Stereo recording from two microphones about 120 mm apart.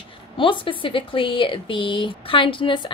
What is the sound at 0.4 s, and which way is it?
Speech, 45° left (ahead or behind).